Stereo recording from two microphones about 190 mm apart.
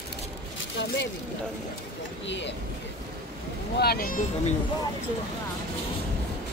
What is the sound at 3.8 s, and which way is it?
Speech, 55° left (ahead or behind).